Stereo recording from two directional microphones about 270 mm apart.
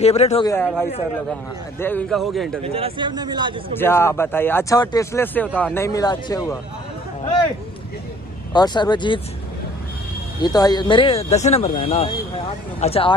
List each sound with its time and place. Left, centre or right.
0.0 s speech: left
1.8 s a man's voice: centre
2.6 s speech: right
3.7 s speech: centre
8.5 s speech: centre
10.4 s speech: centre